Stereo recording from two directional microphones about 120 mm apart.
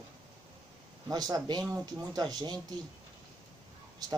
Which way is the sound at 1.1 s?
30° right (ahead or behind).